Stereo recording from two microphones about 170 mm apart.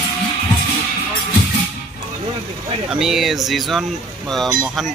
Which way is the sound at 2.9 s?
Centre (ahead or behind).